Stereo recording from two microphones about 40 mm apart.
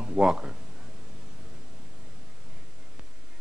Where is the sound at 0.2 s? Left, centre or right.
Centre.